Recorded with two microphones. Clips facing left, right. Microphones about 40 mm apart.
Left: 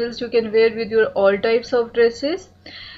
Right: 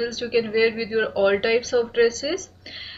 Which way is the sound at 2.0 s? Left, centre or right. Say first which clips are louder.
Left 4 dB; centre.